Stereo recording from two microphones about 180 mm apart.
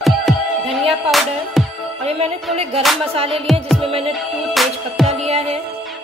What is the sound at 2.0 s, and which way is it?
Music, 35° right (ahead or behind).